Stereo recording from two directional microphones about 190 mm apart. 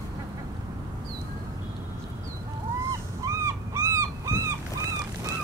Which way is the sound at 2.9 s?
15° right (ahead or behind).